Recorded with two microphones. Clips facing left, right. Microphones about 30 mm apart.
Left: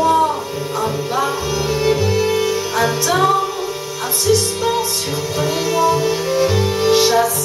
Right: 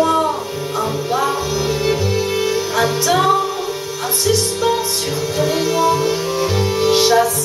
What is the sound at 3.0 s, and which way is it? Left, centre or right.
Music, centre.